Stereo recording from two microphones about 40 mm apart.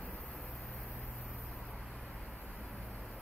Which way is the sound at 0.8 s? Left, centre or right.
Left.